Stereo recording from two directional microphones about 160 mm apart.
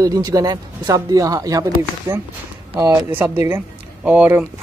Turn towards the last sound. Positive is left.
turn(degrees=-10)  # may be behind; listen again after turning